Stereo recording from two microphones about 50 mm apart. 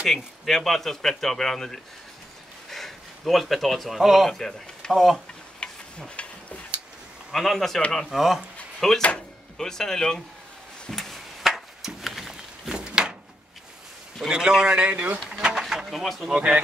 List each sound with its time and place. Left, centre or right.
0.0 s speech: centre
4.3 s speech: centre
5.6 s a sound: centre
7.3 s a man's voice: centre
8.4 s speech: centre
10.9 s a sound: centre
14.3 s a man's voice: centre
15.5 s a sound: centre
15.9 s a man's voice: centre
16.3 s speech: right